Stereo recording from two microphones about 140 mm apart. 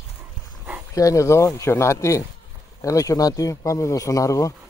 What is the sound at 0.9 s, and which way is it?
Speech, 25° left (ahead or behind).